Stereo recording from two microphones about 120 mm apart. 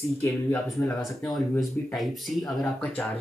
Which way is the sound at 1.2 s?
Centre (ahead or behind).